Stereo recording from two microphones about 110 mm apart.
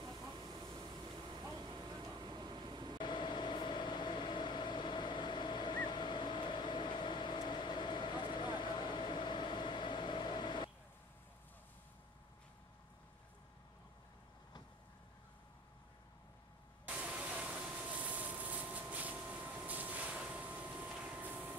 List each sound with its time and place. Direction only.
0.0 s vehicle: 40° right (ahead or behind)
3.0 s vehicle: 45° left (ahead or behind)
16.8 s vehicle: 10° right (ahead or behind)